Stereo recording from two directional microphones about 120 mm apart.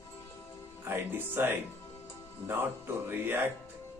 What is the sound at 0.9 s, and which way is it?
Speech, 15° right (ahead or behind).